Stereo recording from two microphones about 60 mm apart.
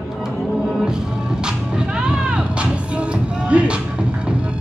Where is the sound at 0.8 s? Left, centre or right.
Centre.